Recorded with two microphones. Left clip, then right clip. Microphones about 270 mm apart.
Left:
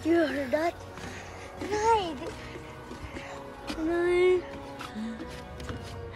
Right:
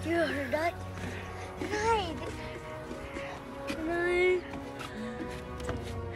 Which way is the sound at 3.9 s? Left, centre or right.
Left.